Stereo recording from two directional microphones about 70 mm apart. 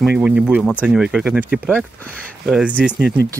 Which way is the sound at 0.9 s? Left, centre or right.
Centre.